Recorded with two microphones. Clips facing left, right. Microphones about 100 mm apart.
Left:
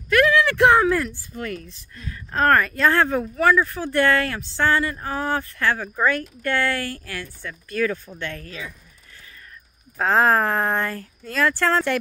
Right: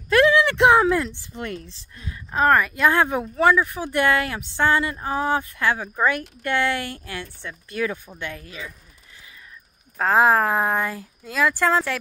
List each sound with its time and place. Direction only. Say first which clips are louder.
0.1 s speech: right 1 dB; 25° right (ahead or behind)
2.3 s speech: even; 10° right (ahead or behind)
9.9 s speech: right 1 dB; 5° right (ahead or behind)